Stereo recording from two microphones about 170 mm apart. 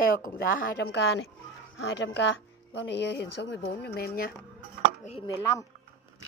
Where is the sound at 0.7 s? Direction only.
80° left; by 4.3 s 65° left (ahead or behind).